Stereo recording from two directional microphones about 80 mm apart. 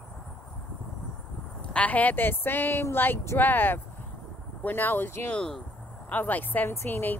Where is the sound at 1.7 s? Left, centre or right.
Centre.